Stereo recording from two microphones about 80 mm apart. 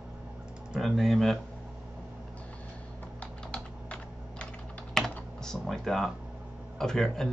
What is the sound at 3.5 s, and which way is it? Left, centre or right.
Typing, centre.